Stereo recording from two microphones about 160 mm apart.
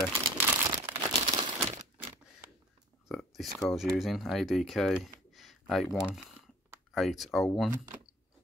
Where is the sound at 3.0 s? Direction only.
Centre (ahead or behind).